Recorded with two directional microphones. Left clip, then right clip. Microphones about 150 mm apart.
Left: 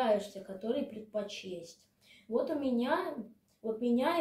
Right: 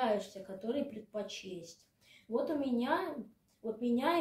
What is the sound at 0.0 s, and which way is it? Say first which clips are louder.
A woman's voice: left 3 dB; 10° right (ahead or behind).